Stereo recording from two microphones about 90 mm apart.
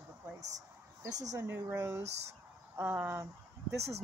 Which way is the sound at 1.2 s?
40° right (ahead or behind).